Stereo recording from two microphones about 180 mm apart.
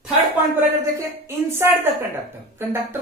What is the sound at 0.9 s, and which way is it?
A woman's voice, 15° right (ahead or behind).